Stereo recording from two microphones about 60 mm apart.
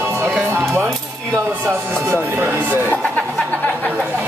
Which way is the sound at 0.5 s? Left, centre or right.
Right.